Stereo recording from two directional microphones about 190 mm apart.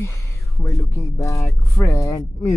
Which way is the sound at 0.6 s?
15° left (ahead or behind).